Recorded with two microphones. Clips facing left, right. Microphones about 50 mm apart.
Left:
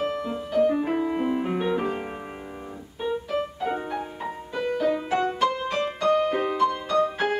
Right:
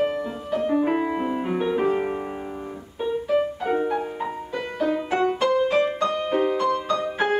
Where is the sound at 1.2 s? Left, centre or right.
Centre.